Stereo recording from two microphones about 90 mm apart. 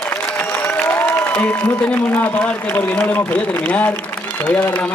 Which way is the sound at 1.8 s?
15° left (ahead or behind).